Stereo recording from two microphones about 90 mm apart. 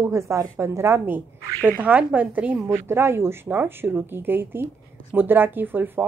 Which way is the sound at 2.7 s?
30° right (ahead or behind).